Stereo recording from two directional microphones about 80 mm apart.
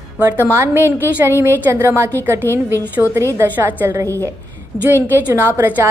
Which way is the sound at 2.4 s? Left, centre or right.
Left.